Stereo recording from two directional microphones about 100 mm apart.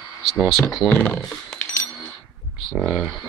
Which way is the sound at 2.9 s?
5° right (ahead or behind).